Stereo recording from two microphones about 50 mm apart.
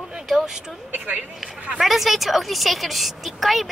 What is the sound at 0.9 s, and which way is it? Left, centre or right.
Speech, right.